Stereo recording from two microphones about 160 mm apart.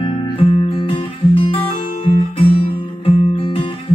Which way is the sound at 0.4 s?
35° left (ahead or behind).